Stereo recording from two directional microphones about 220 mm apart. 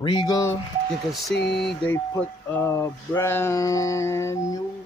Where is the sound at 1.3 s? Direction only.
50° left (ahead or behind).